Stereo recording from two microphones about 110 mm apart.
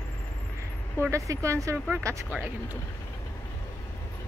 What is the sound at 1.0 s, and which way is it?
Speech, 30° right (ahead or behind).